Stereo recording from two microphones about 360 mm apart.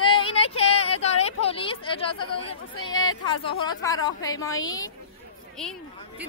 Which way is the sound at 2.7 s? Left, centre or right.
Left.